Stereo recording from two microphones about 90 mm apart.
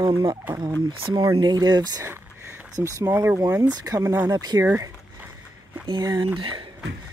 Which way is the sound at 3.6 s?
45° right (ahead or behind).